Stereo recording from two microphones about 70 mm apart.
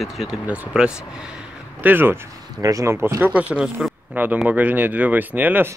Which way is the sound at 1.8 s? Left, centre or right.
Right.